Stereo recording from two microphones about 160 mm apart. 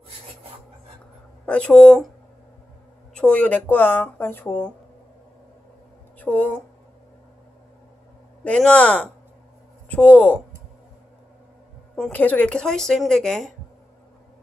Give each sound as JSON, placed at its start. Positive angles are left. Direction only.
{"t": 1.4, "sound": "speech", "side_deg": 5}
{"t": 3.2, "sound": "speech", "side_deg": 10}
{"t": 6.1, "sound": "speech", "side_deg": 10}
{"t": 8.5, "sound": "speech", "side_deg": 5}
{"t": 11.9, "sound": "speech", "side_deg": 10}